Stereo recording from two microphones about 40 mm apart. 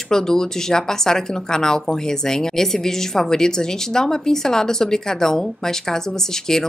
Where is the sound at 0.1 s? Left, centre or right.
Centre.